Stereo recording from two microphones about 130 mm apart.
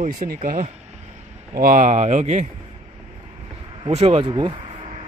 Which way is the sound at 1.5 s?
85° right.